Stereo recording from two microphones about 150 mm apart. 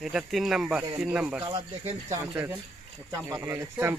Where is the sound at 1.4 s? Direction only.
40° right (ahead or behind).